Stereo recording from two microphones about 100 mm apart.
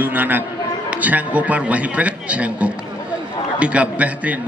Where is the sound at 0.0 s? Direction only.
20° right (ahead or behind).